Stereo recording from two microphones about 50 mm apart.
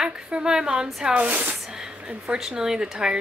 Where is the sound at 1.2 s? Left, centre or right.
Right.